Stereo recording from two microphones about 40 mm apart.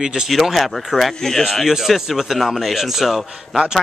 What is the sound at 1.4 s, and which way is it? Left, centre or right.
Speech, centre.